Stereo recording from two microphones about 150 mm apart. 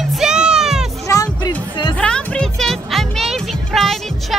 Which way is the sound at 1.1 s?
25° left (ahead or behind).